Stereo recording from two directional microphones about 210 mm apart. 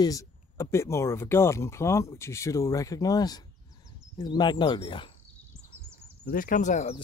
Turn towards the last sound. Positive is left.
turn(degrees=30)  # may be behind; listen again after turning